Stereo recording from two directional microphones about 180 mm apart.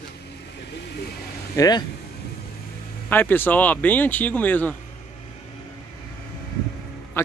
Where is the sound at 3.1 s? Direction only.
10° left (ahead or behind).